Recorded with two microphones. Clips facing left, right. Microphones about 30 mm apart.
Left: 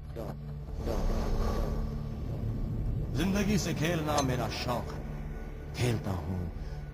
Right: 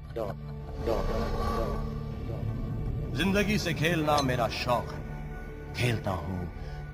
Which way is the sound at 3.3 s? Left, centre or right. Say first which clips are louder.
Right 3 dB; right.